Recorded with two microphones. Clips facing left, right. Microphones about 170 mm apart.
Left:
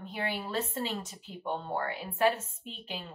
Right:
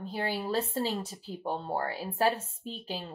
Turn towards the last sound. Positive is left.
turn(degrees=-35)  # may be behind; listen again after turning